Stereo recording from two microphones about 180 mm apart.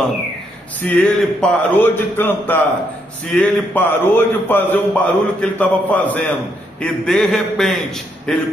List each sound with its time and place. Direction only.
0.7 s a man's voice: 10° left (ahead or behind)